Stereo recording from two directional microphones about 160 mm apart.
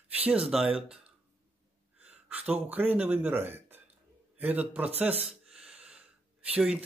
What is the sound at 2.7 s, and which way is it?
Speech, 10° right (ahead or behind).